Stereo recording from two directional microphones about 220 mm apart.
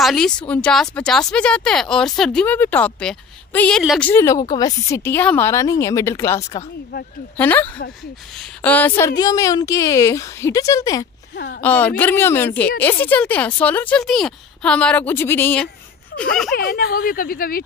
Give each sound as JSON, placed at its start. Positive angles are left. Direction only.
{"t": 0.0, "sound": "speech", "side_deg": 0}
{"t": 4.1, "sound": "a woman's voice", "side_deg": 15}
{"t": 16.5, "sound": "speech", "side_deg": 45}